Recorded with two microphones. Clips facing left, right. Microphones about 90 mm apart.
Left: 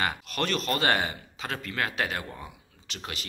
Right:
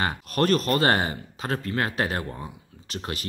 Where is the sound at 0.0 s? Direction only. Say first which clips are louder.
Right 5 dB; 40° right (ahead or behind).